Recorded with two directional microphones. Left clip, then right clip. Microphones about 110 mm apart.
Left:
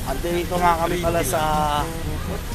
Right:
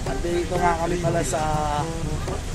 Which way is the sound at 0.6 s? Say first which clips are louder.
Left 5 dB; 5° left (ahead or behind).